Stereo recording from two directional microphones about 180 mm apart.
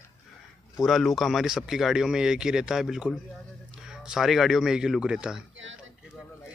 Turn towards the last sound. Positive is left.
turn(degrees=-5)  # may be behind; listen again after turning